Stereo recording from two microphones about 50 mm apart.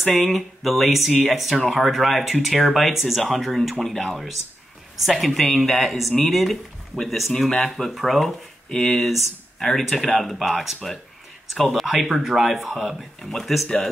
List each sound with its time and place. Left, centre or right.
0.3 s speech: centre
8.6 s speech: centre
8.9 s speech: centre
12.7 s speech: centre